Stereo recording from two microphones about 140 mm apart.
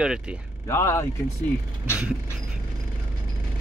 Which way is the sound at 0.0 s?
5° right (ahead or behind).